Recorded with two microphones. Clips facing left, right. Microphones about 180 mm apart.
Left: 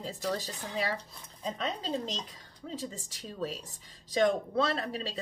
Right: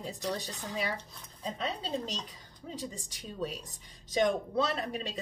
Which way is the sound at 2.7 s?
15° right (ahead or behind).